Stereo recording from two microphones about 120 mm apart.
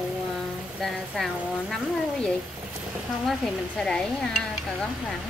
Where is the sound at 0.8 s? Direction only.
Centre (ahead or behind).